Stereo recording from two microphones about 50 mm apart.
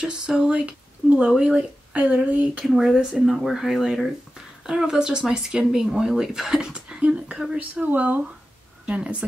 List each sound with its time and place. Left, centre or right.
0.0 s speech: centre
2.8 s speech: centre
7.5 s a woman's voice: right